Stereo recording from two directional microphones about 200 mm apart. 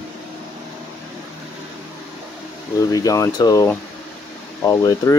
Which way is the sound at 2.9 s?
15° left (ahead or behind).